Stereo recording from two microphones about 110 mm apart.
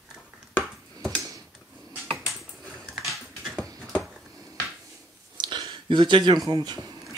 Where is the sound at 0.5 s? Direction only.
10° left (ahead or behind).